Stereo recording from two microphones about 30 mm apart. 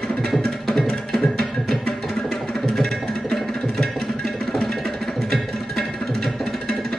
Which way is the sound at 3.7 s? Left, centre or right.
Centre.